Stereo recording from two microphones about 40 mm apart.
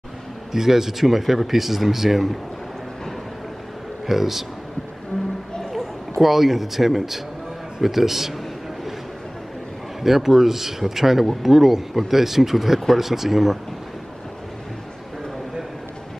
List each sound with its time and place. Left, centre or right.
0.5 s speech: centre
4.0 s speech: centre
5.6 s a sound: centre
6.2 s speech: centre
10.0 s speech: centre